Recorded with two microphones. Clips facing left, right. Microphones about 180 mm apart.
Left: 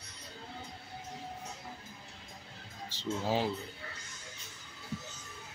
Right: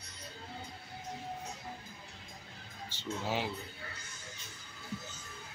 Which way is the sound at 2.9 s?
30° left (ahead or behind).